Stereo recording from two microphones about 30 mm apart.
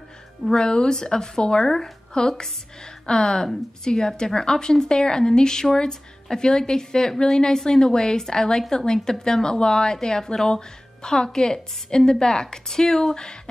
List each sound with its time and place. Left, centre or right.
0.5 s a woman's voice: left
1.6 s a woman's voice: centre
2.1 s a woman's voice: left